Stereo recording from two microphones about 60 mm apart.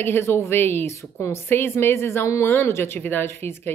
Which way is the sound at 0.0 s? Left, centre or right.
Left.